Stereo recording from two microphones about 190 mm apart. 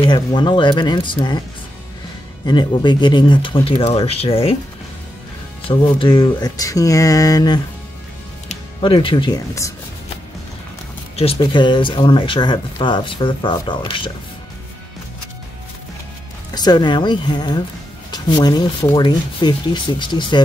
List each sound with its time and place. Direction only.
0.0 s speech: 25° left (ahead or behind)
2.4 s speech: 25° left (ahead or behind)
5.7 s speech: 25° left (ahead or behind)
11.3 s speech: 25° left (ahead or behind)
16.5 s speech: 20° left (ahead or behind)